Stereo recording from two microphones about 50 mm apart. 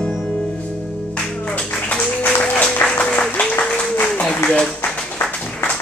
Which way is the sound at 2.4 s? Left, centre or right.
Left.